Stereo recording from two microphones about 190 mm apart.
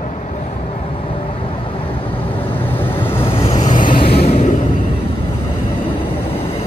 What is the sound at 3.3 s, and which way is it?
Vehicle, 30° left (ahead or behind).